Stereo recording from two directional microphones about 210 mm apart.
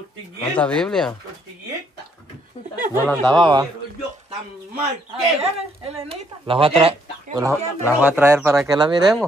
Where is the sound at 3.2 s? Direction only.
20° right (ahead or behind).